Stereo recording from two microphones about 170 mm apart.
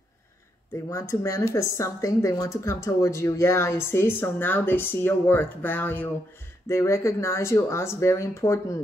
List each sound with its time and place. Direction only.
0.8 s speech: 15° left (ahead or behind)